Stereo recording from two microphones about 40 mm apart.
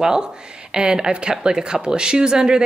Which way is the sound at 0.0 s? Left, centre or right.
Centre.